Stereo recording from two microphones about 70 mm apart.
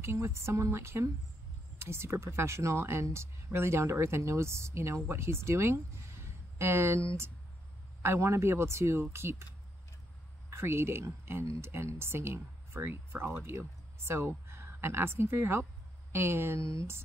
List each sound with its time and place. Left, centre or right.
0.0 s speech: right
10.5 s speech: right